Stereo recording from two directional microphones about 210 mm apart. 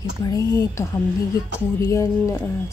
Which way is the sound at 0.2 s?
15° left (ahead or behind).